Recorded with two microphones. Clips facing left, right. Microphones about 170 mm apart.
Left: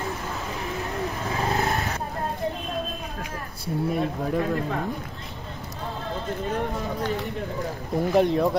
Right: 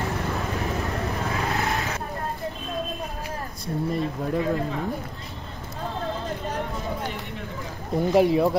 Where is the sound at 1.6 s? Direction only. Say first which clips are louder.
Left 1 dB; 40° left (ahead or behind).